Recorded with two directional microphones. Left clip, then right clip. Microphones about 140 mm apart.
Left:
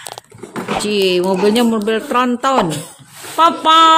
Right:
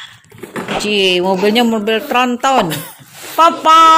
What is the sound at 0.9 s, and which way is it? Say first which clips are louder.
Speech: right 2 dB; 90° left.